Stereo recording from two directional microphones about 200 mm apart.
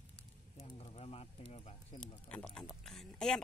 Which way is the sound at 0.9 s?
30° left (ahead or behind).